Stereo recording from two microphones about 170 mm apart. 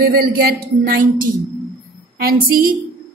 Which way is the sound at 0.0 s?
65° right (ahead or behind).